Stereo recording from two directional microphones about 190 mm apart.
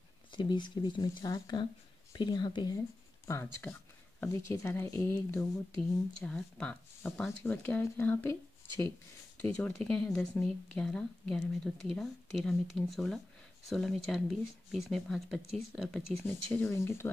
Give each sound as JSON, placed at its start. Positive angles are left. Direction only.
{"t": 0.3, "sound": "a woman's voice", "side_deg": 25}